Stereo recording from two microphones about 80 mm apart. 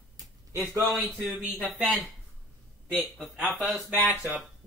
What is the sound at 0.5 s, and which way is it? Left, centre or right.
Speech, right.